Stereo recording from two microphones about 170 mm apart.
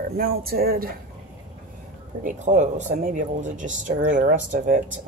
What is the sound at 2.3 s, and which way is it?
Speech, 45° right (ahead or behind).